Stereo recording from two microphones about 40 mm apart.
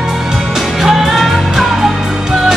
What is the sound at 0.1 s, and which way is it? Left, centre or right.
Music, centre.